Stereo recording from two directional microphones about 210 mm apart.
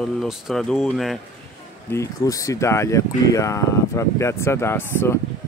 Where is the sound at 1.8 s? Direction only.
15° left (ahead or behind).